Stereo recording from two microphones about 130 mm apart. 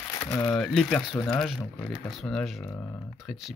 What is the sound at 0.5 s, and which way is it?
Speech, 5° left (ahead or behind).